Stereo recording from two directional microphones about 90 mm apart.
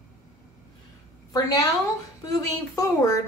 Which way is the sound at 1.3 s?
45° left (ahead or behind).